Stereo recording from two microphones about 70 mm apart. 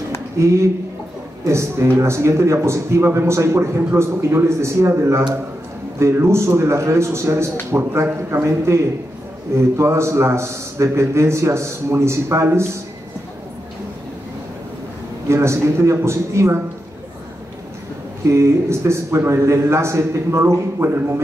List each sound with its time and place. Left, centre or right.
0.4 s a man's voice: right
15.2 s a man's voice: right
18.2 s a man's voice: right